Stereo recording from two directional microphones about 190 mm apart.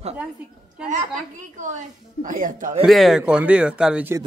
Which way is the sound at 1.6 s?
40° right (ahead or behind).